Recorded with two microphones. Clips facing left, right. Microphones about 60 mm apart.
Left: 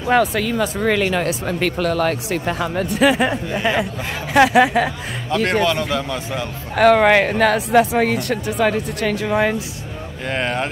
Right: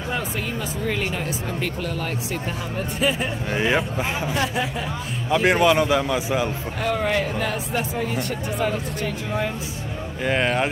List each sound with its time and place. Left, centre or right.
0.1 s speech: left
5.3 s a man's voice: centre
6.8 s speech: left
10.2 s speech: centre